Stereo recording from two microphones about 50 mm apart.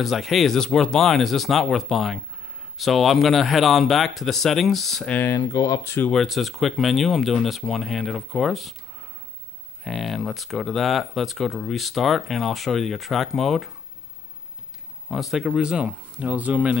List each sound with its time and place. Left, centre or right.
0.0 s speech: centre
5.3 s speech: left
6.1 s speech: centre
9.8 s speech: centre
15.0 s speech: centre
15.4 s speech: centre